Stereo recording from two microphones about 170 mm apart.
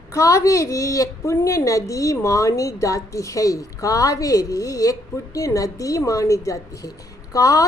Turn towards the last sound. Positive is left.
turn(degrees=20)  # may be behind; listen again after turning